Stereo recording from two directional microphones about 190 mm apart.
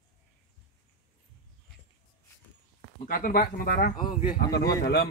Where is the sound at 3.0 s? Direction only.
50° left (ahead or behind).